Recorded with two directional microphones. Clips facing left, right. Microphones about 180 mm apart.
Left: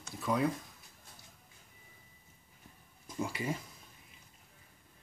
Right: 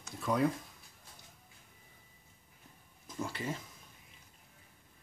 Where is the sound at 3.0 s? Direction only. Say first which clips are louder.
Left 2 dB; 10° left (ahead or behind).